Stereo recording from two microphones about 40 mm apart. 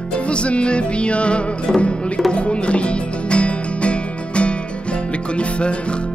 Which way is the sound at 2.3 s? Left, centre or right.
Left.